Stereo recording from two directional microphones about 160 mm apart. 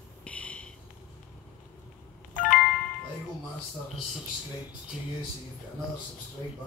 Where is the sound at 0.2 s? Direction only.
10° left (ahead or behind).